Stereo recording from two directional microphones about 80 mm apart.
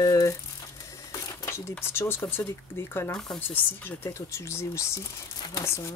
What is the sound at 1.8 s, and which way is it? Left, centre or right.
Speech, left.